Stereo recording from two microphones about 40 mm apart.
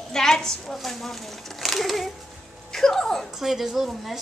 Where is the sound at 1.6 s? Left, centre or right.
Centre.